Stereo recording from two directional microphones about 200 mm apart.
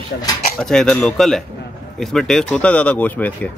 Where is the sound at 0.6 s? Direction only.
5° left (ahead or behind).